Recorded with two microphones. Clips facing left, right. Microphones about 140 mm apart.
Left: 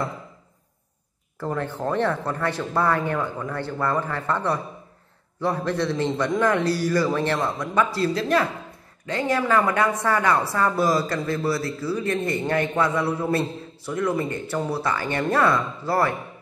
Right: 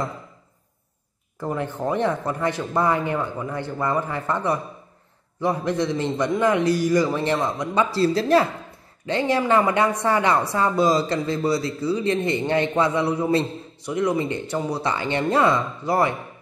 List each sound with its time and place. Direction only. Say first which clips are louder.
1.4 s a man's voice: right 1 dB; 15° right (ahead or behind)